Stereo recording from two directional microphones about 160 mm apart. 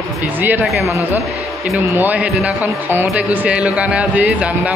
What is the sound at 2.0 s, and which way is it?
Speech, 10° right (ahead or behind).